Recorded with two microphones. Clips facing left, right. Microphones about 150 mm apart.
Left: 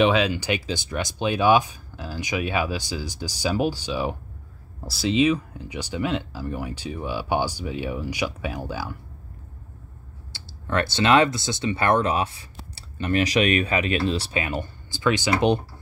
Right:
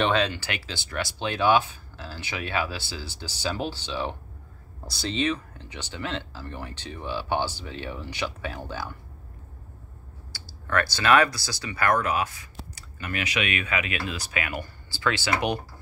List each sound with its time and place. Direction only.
0.0 s speech: 5° left (ahead or behind)
10.3 s speech: 25° left (ahead or behind)